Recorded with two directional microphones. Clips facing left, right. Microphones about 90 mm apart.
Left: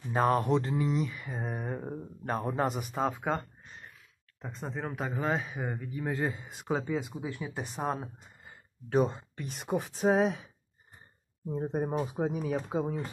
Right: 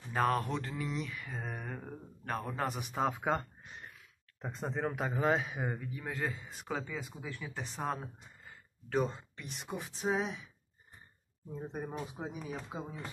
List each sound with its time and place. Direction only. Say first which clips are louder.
0.1 s speech: left 5 dB; 20° left (ahead or behind)
2.8 s speech: left 2 dB; centre (ahead or behind); by 9.2 s 20° left (ahead or behind)
9.4 s speech: left 10 dB; 40° left (ahead or behind)